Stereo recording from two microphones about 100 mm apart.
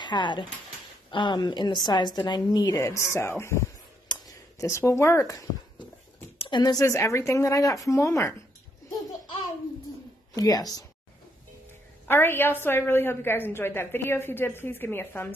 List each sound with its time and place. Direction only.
0.0 s a woman's voice: 50° left (ahead or behind)
2.8 s a woman's voice: 25° left (ahead or behind)
4.1 s a sound: 35° left (ahead or behind)
6.3 s a sound: 70° left (ahead or behind)
6.6 s a woman's voice: 40° left (ahead or behind)
10.3 s a woman's voice: 40° left (ahead or behind)
12.1 s a woman's voice: 20° left (ahead or behind)